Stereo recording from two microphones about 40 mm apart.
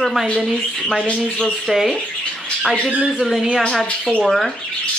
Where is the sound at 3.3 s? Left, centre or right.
Centre.